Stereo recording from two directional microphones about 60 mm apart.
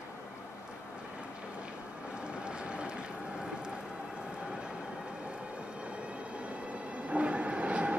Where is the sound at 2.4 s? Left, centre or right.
Centre.